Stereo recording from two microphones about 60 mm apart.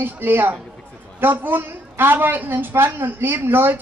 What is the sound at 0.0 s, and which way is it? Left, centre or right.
A woman's voice, right.